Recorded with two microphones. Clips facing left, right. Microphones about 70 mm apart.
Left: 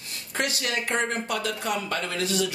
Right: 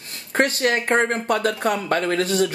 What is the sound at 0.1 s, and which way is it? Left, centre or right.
Speech, right.